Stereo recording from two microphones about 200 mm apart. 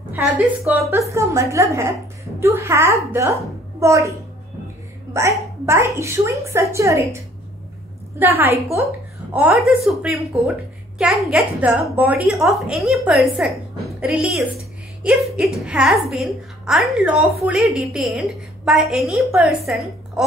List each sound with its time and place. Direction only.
0.7 s a woman's voice: 15° right (ahead or behind)
5.1 s a woman's voice: 15° right (ahead or behind)
8.2 s a woman's voice: 10° right (ahead or behind)